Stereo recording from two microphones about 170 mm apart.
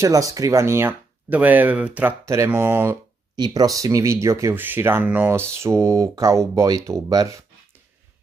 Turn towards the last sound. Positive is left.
turn(degrees=-20)  # may be behind; listen again after turning